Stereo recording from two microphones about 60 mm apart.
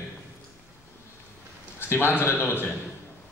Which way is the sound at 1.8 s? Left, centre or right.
Left.